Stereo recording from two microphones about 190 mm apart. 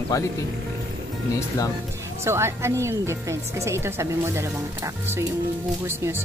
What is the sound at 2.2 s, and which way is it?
Speech, 15° right (ahead or behind).